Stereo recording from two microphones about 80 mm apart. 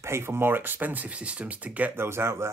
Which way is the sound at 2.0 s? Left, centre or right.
Right.